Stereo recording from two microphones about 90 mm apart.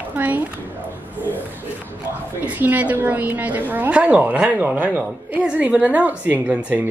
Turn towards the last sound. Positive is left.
turn(degrees=-15)  # may be behind; listen again after turning